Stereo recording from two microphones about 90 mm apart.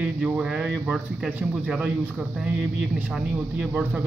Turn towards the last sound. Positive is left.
turn(degrees=-20)  # may be behind; listen again after turning